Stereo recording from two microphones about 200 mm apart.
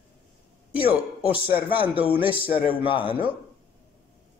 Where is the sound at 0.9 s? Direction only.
5° right (ahead or behind).